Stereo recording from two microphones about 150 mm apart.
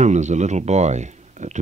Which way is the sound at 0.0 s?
50° right (ahead or behind).